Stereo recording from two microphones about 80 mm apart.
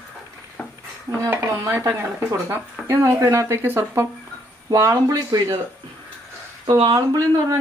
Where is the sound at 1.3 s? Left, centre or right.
Right.